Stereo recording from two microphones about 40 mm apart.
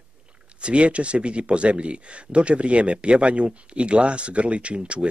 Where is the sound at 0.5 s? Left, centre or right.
Right.